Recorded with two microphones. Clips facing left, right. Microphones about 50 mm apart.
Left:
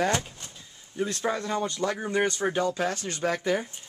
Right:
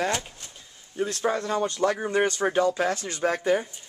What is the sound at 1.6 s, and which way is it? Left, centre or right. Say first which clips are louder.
Speech: right 4 dB; right.